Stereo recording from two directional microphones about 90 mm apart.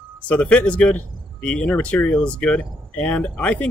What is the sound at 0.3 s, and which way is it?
Speech, 15° left (ahead or behind).